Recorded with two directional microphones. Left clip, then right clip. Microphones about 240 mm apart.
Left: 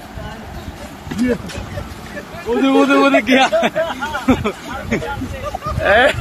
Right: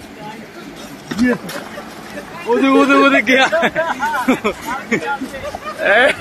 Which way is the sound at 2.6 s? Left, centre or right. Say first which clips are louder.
Right 1 dB; centre.